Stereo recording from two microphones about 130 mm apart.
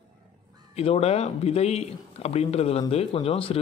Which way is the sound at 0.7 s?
50° left (ahead or behind).